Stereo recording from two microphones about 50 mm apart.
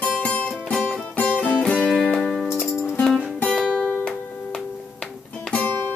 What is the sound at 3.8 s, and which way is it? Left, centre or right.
Music, left.